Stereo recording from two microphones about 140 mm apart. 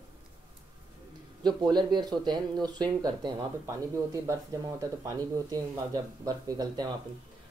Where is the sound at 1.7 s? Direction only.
30° right (ahead or behind).